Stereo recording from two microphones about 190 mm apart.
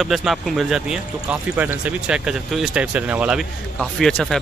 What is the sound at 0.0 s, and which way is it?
Speech, centre (ahead or behind).